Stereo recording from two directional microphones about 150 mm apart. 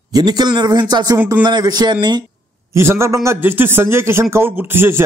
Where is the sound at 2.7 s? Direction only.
15° right (ahead or behind).